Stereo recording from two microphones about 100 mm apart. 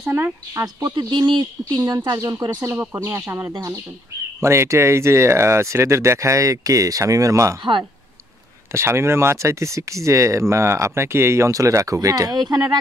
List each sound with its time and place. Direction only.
0.0 s speech: 25° right (ahead or behind)
0.7 s speech: 50° right (ahead or behind)
2.5 s speech: 25° right (ahead or behind)
8.7 s speech: 25° right (ahead or behind); by 12.6 s 40° right (ahead or behind)